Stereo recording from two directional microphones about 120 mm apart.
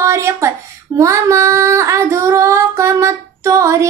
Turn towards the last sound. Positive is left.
turn(degrees=-25)  # may be behind; listen again after turning